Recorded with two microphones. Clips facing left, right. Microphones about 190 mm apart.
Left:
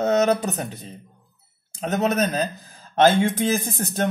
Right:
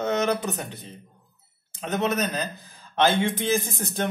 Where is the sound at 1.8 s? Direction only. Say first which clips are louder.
Left 4 dB; 40° left (ahead or behind).